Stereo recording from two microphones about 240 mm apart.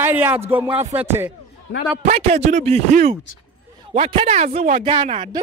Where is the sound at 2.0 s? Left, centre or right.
Right.